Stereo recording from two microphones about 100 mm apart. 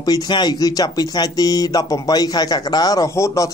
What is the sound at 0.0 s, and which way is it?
Speech, 45° left (ahead or behind).